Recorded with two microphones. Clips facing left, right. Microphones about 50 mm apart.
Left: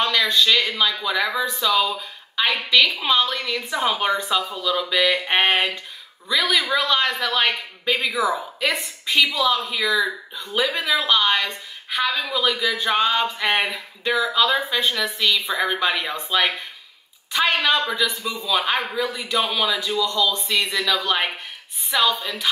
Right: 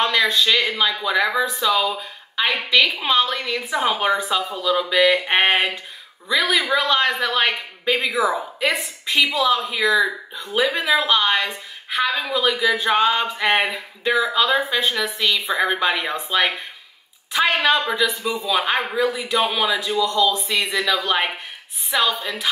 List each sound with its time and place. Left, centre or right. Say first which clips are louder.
0.0 s a woman's voice: right 1 dB; centre